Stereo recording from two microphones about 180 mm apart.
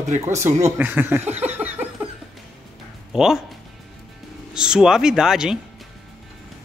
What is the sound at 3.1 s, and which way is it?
Speech, 5° right (ahead or behind).